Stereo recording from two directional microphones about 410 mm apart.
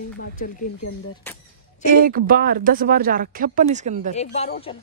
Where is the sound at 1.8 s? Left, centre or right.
Right.